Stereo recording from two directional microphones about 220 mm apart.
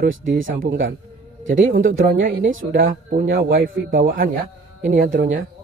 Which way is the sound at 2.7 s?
40° right (ahead or behind).